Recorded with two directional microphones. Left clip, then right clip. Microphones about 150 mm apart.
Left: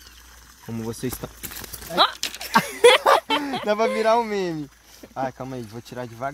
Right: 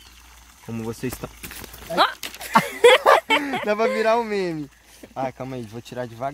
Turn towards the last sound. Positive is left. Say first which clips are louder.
# right 2 dB
turn(degrees=-10)  # may be behind; listen again after turning